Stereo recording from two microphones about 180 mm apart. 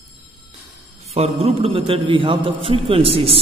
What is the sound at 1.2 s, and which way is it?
A man's voice, 35° right (ahead or behind).